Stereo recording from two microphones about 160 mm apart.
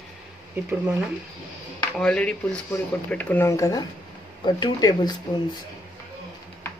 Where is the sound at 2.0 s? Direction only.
5° left (ahead or behind); by 5.6 s 25° left (ahead or behind).